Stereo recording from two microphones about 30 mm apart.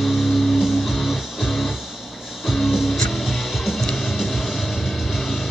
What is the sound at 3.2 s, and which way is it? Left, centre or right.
Music, centre.